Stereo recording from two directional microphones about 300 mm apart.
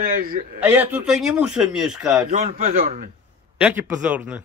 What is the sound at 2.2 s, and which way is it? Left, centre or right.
Speech, right.